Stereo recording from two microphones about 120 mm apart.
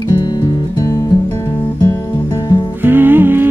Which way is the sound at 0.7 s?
30° left (ahead or behind).